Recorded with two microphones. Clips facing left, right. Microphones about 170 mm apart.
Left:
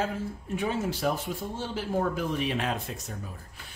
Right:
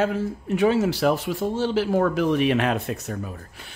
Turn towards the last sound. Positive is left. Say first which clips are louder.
# right 7 dB
turn(degrees=-70)  # may be behind; listen again after turning